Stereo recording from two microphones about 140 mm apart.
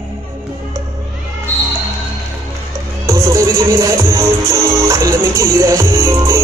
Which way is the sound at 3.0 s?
20° right (ahead or behind).